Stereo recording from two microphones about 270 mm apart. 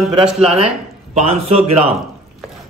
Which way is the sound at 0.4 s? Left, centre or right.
Right.